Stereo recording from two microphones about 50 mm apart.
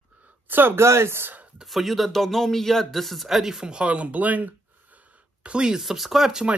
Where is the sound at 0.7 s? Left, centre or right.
Right.